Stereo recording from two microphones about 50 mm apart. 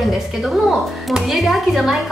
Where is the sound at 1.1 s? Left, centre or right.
Centre.